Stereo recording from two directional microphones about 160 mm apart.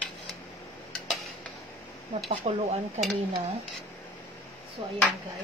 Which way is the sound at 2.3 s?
35° right (ahead or behind).